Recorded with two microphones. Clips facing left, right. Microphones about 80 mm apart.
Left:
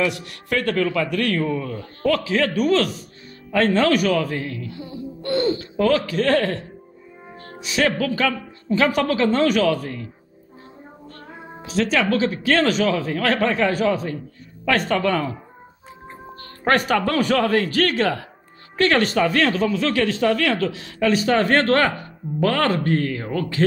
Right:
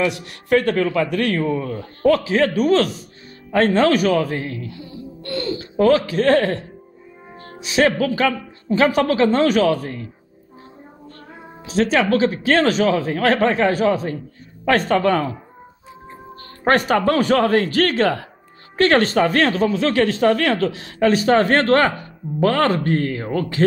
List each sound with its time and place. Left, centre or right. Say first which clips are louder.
0.0 s a man's voice: right 2 dB; right
5.2 s speech: left 4 dB; left
5.6 s speech: right 4 dB; right
7.6 s a man's voice: right 4 dB; right
11.6 s speech: right 3 dB; right
16.6 s a man's voice: right 3 dB; right